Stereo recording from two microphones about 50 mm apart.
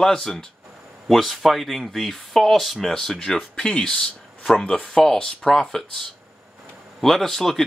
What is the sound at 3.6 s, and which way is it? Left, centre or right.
A man's voice, centre.